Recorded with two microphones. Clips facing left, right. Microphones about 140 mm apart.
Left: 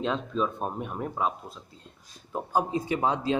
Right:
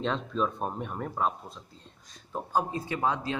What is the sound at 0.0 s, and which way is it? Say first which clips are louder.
Speech: left 1 dB; 5° left (ahead or behind).